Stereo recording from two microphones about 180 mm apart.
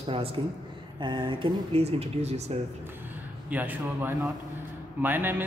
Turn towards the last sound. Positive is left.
turn(degrees=-10)  # may be behind; listen again after turning